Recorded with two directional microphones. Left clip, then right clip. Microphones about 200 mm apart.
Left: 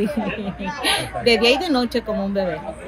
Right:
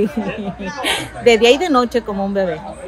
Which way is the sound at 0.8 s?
10° right (ahead or behind).